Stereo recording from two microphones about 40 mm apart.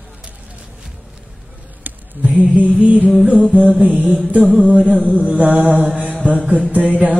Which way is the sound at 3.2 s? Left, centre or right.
Right.